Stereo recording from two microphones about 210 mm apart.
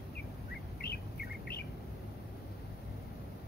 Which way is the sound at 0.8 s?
50° left (ahead or behind).